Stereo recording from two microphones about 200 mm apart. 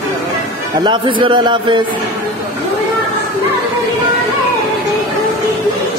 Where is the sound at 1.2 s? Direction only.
25° right (ahead or behind).